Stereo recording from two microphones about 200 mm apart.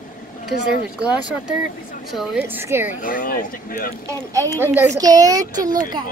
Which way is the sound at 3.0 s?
45° left (ahead or behind).